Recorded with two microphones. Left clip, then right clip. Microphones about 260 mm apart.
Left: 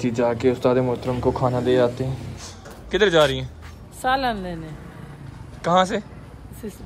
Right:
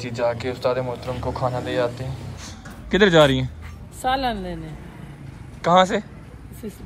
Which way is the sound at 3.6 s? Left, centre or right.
Centre.